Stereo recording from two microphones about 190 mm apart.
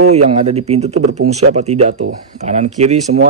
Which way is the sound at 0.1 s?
35° right (ahead or behind).